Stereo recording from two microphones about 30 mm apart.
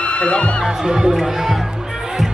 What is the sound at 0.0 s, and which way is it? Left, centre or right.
Music, left.